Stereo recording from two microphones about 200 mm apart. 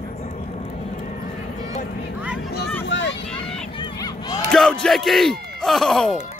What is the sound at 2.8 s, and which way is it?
Vehicle, 65° left (ahead or behind).